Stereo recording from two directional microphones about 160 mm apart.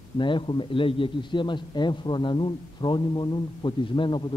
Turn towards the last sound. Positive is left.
turn(degrees=30)  # may be behind; listen again after turning